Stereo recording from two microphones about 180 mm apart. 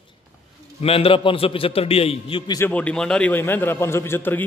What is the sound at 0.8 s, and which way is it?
A man's voice, 30° left (ahead or behind).